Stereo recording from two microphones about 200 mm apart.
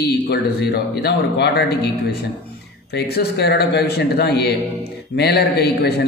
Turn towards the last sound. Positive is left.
turn(degrees=55)  # may be behind; listen again after turning